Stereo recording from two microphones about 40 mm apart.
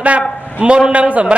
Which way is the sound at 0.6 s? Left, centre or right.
Right.